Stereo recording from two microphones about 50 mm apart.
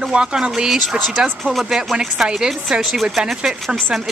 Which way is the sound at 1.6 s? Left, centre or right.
Centre.